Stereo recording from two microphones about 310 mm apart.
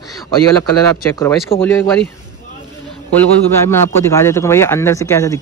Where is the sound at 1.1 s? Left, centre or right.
Centre.